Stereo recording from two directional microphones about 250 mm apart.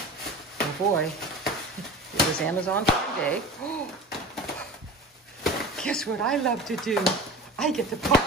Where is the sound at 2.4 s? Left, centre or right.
Centre.